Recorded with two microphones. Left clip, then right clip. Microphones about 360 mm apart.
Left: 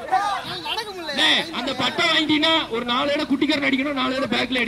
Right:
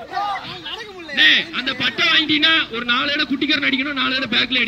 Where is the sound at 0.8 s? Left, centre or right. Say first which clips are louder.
Right 6 dB; left.